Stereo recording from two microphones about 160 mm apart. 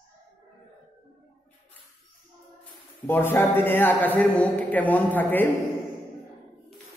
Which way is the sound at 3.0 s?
15° left (ahead or behind).